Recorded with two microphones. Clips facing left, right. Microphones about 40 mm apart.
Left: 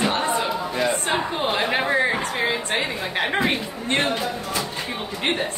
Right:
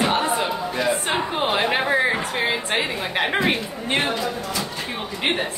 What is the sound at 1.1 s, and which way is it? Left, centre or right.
Speech, right.